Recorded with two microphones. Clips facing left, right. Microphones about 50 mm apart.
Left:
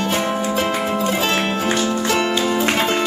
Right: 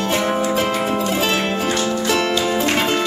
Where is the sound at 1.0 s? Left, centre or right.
Left.